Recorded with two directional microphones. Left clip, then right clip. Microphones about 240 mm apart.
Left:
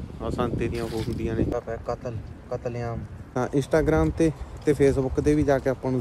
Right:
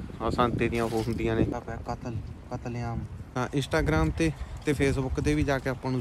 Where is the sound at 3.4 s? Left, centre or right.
Centre.